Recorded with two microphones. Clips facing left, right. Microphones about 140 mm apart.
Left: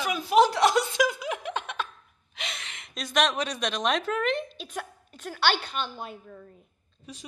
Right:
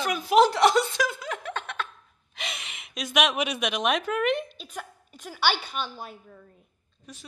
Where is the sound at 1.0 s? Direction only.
15° left (ahead or behind).